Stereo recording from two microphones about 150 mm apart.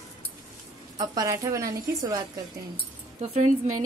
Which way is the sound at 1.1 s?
25° right (ahead or behind).